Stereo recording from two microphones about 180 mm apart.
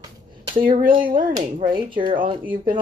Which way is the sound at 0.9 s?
30° right (ahead or behind).